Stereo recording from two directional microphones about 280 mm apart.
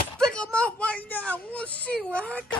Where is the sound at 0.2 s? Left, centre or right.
Centre.